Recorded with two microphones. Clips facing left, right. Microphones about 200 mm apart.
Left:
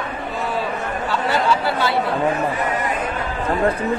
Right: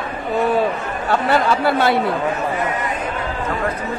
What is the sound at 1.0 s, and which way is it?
Speech, 55° right (ahead or behind).